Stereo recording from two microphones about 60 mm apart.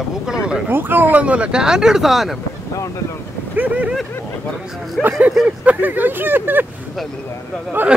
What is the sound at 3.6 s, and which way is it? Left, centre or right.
Speech, right.